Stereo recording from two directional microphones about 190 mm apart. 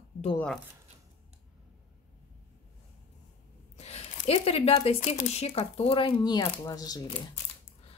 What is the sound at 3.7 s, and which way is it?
Speech, 35° left (ahead or behind).